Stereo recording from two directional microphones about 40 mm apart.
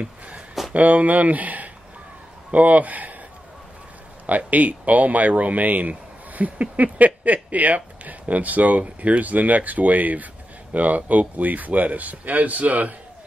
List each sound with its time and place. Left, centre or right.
0.7 s speech: right
4.3 s speech: right